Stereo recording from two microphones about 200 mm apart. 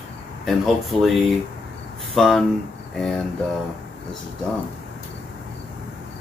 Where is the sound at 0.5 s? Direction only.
Centre (ahead or behind).